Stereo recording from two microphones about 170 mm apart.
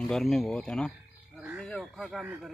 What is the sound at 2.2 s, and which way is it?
Speech, 10° right (ahead or behind).